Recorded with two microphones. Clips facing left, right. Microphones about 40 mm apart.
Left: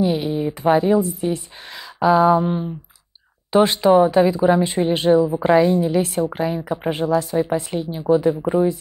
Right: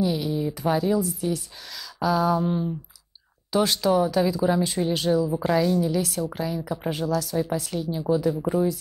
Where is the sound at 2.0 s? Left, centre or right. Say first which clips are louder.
Left 8 dB; left.